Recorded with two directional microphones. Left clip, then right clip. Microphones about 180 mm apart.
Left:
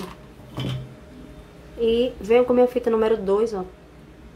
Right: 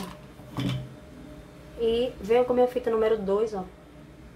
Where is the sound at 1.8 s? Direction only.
20° left (ahead or behind).